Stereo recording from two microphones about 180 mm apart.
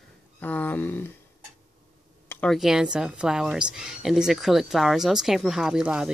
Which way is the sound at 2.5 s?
Centre (ahead or behind).